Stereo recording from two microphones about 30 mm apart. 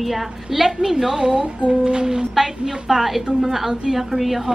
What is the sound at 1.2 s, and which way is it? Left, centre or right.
Speech, right.